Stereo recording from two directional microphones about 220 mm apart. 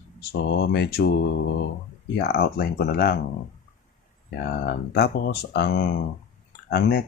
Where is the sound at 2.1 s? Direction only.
45° left (ahead or behind).